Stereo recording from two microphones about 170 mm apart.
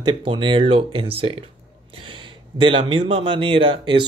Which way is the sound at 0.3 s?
30° right (ahead or behind).